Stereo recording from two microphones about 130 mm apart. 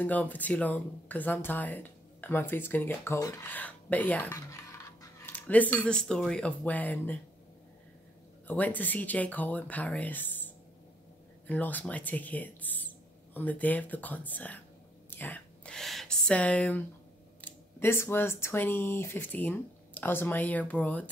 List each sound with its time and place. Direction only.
0.0 s speech: 10° left (ahead or behind)
3.4 s speech: 10° left (ahead or behind)
8.5 s speech: 15° left (ahead or behind)
11.4 s speech: 10° left (ahead or behind)
15.0 s whispering: 15° left (ahead or behind)
17.4 s speech: 15° left (ahead or behind)